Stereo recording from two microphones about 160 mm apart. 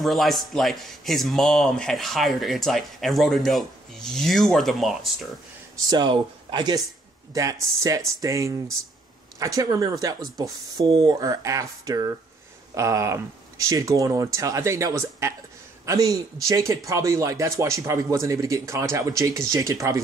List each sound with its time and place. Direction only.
0.0 s speech: centre (ahead or behind)
5.9 s speech: 30° right (ahead or behind)